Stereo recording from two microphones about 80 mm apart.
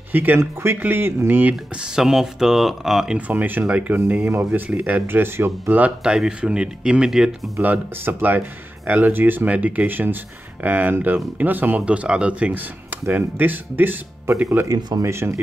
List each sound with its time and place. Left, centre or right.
0.1 s speech: right
1.5 s speech: centre
3.2 s speech: right
7.6 s speech: right
15.0 s speech: right